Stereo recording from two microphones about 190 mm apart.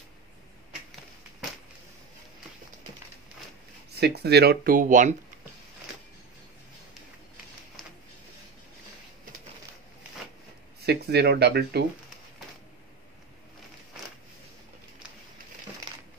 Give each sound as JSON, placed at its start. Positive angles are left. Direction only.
{"t": 4.0, "sound": "speech", "side_deg": -60}
{"t": 10.9, "sound": "speech", "side_deg": -60}